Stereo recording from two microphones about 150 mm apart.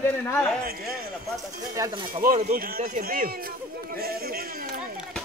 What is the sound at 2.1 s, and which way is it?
Speech, 65° right (ahead or behind).